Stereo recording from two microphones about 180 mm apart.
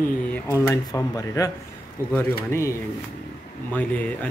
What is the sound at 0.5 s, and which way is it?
Speech, 20° left (ahead or behind).